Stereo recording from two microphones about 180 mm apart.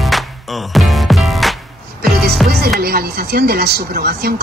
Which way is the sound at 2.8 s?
60° right (ahead or behind).